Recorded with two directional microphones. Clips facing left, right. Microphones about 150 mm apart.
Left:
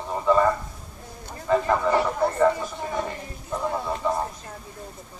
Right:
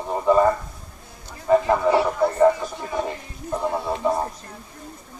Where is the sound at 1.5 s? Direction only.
15° right (ahead or behind).